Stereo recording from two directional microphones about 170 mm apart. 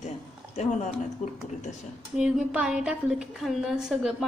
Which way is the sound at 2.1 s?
5° right (ahead or behind).